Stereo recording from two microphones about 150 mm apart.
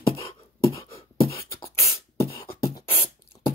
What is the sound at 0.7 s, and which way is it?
Beatboxing, 20° left (ahead or behind).